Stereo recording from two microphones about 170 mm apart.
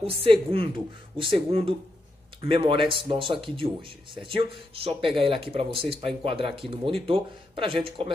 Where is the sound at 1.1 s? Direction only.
30° right (ahead or behind).